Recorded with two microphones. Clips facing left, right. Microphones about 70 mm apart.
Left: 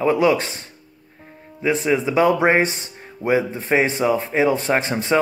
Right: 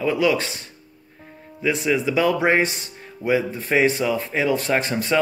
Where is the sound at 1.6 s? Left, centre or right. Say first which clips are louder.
Left 2 dB; left.